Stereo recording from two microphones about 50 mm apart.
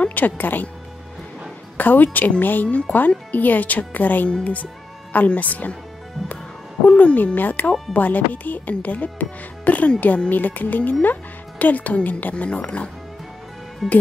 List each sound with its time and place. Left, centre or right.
0.0 s speech: left
1.8 s speech: left
6.9 s speech: left
7.3 s speech: left
13.8 s speech: centre